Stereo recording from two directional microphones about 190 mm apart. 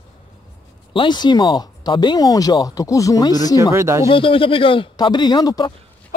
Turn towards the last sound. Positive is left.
turn(degrees=20)  # may be behind; listen again after turning